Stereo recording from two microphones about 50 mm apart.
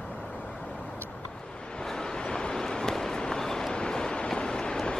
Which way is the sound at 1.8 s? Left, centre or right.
Centre.